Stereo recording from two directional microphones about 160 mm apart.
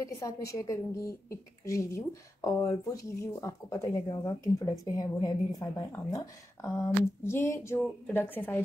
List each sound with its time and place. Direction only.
0.0 s a woman's voice: 20° left (ahead or behind)